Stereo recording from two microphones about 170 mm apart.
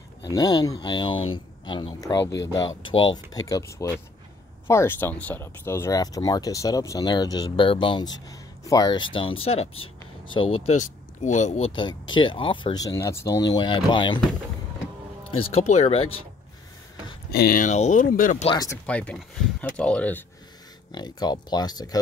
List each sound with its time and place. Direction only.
0.3 s speech: 20° left (ahead or behind)
10.8 s speech: 45° left (ahead or behind); by 14.2 s 30° left (ahead or behind)
15.4 s speech: 40° left (ahead or behind)
17.3 s speech: 65° left (ahead or behind)
18.9 s speech: 5° left (ahead or behind)
20.9 s speech: 25° left (ahead or behind)